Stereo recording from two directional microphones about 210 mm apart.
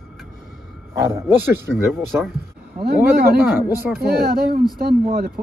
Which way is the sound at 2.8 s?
45° right (ahead or behind).